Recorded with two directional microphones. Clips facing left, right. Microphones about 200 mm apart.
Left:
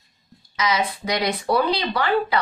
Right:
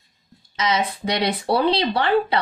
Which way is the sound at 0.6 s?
30° right (ahead or behind).